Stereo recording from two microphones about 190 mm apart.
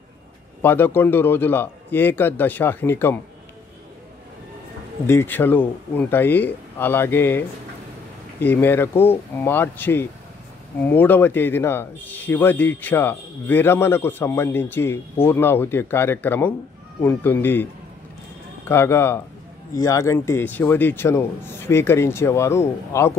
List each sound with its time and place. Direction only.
0.6 s speech: 10° left (ahead or behind)
5.0 s speech: 10° left (ahead or behind)
18.7 s speech: 15° left (ahead or behind)